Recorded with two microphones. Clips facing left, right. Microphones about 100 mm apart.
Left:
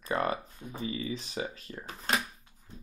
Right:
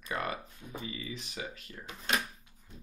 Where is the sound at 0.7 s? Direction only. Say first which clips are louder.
Left 6 dB; 35° left (ahead or behind).